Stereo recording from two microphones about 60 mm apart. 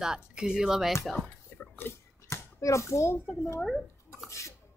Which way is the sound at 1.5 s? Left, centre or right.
Left.